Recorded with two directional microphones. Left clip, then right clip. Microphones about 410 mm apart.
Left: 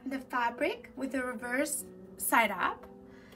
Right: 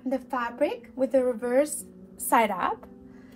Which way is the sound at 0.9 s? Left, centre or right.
Centre.